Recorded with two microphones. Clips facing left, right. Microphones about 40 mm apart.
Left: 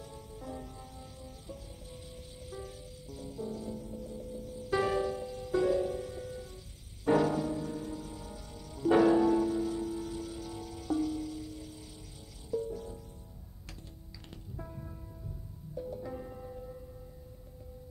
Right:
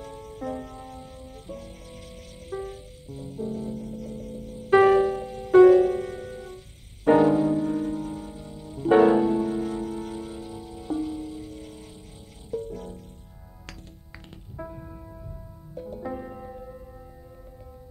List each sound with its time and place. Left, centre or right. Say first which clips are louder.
0.0 s music: right 10 dB; right
2.5 s music: right 11 dB; right
7.1 s music: right 9 dB; right
8.5 s music: right 7 dB; right
10.5 s music: right 2 dB; right
14.6 s music: right 9 dB; right